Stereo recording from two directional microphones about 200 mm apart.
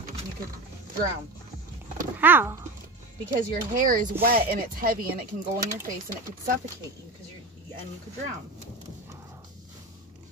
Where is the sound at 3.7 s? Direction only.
45° right (ahead or behind).